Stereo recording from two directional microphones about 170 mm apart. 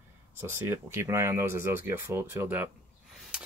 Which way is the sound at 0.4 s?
15° right (ahead or behind).